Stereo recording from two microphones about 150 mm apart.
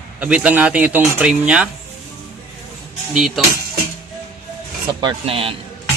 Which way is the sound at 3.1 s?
Centre (ahead or behind).